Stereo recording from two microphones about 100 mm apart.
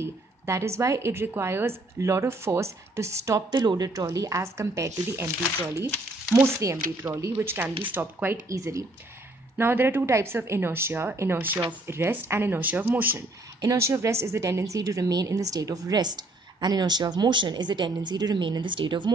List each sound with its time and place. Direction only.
0.0 s a woman's voice: 30° right (ahead or behind)
6.4 s a woman's voice: 30° right (ahead or behind)
8.5 s speech: 35° right (ahead or behind)
9.6 s a woman's voice: 20° right (ahead or behind); by 19.1 s 50° right (ahead or behind)